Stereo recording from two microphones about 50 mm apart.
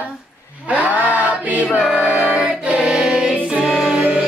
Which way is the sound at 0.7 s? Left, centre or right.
Right.